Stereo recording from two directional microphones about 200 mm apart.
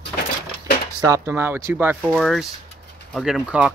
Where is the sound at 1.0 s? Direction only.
15° right (ahead or behind).